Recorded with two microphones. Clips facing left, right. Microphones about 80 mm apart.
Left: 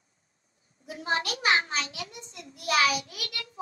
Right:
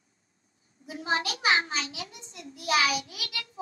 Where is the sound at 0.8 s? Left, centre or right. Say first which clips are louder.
Even; left.